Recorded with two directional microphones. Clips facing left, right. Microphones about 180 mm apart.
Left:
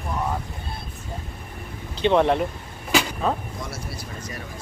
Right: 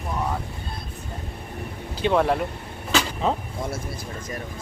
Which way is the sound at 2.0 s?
5° right (ahead or behind).